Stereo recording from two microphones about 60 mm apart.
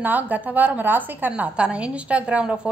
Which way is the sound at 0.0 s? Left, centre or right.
Right.